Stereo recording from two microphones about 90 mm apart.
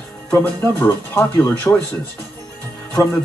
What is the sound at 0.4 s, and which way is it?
Speech, 20° left (ahead or behind).